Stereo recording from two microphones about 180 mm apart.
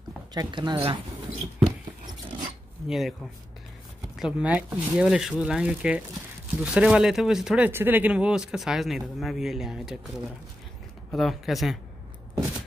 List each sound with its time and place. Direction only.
0.3 s speech: 25° right (ahead or behind)
2.9 s speech: centre (ahead or behind)
4.2 s speech: 5° right (ahead or behind)